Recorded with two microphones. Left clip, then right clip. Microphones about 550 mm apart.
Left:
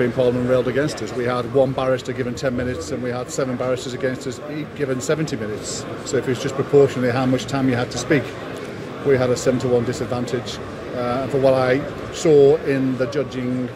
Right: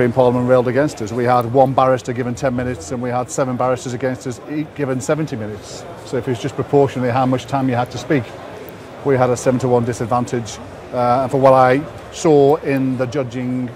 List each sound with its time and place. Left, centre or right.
0.0 s speech: right